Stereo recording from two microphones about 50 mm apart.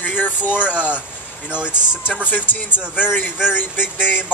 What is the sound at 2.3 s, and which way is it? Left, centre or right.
A man's voice, left.